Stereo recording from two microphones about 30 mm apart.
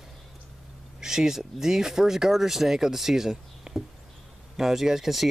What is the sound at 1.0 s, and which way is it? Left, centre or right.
Speech, centre.